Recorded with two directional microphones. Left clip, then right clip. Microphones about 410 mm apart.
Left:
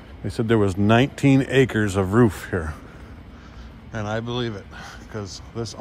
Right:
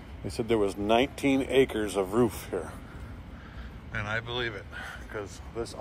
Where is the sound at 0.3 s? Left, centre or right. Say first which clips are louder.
Left 6 dB; left.